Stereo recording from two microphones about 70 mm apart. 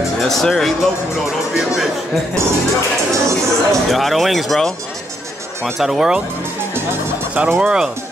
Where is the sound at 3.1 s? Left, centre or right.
Right.